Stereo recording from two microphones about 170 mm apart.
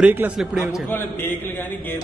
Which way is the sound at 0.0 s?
10° right (ahead or behind).